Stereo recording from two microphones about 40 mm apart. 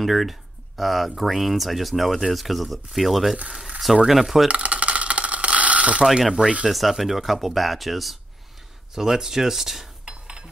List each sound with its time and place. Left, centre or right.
0.0 s speech: centre
4.5 s a sound: right
6.0 s speech: centre
8.9 s speech: centre
10.0 s cutlery: right